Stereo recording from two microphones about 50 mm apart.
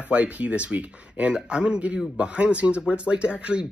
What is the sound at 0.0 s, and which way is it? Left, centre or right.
Speech, right.